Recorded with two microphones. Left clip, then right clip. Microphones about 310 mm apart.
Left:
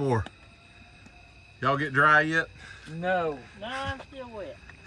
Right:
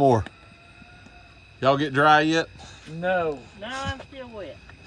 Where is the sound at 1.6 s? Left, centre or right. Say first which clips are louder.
Right 3 dB; centre.